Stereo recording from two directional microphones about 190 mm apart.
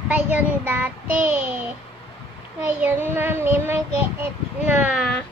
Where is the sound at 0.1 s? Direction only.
10° right (ahead or behind).